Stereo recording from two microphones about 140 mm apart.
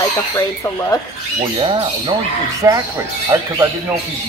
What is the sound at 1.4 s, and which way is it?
Speech, 35° right (ahead or behind).